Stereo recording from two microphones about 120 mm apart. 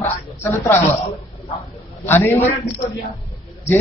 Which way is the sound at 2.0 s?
20° left (ahead or behind).